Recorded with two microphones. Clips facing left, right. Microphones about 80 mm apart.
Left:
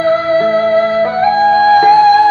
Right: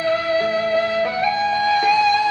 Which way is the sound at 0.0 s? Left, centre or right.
Left.